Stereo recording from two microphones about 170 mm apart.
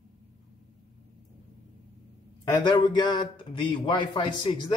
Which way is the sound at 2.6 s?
25° left (ahead or behind).